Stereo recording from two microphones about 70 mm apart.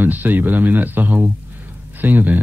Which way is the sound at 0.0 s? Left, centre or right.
Right.